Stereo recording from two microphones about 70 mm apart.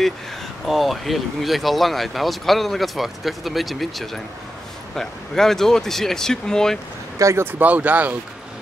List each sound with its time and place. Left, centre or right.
0.7 s speech: centre
7.2 s speech: right
7.5 s speech: right